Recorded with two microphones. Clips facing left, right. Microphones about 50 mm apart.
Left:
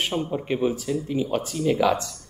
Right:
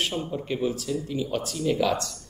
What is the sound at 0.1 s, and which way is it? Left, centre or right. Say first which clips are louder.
Speech: left 4 dB; left.